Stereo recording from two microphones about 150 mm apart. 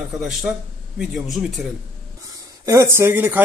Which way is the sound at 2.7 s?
15° right (ahead or behind).